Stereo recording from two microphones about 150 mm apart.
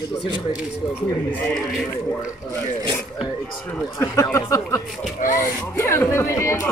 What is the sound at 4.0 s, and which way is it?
Speech, 20° left (ahead or behind).